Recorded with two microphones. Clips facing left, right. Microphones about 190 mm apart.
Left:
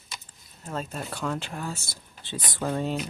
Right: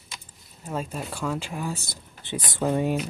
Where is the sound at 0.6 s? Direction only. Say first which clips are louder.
Right 2 dB; 10° right (ahead or behind).